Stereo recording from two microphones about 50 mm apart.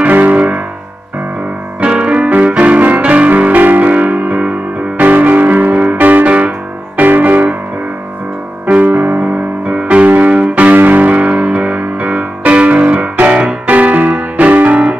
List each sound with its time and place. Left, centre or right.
0.0 s music: right
1.8 s music: right
8.8 s music: right